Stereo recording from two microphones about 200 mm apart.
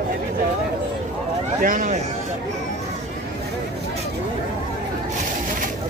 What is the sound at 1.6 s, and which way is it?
Speech, 40° right (ahead or behind).